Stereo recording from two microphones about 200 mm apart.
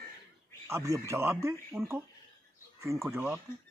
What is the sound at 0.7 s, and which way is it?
Speech, 15° right (ahead or behind).